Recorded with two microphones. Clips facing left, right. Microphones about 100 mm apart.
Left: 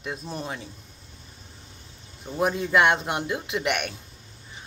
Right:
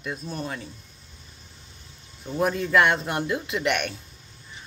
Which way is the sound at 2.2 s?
20° left (ahead or behind).